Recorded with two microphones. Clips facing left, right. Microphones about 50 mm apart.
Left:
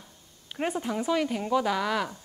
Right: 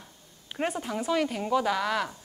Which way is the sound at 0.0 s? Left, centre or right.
Centre.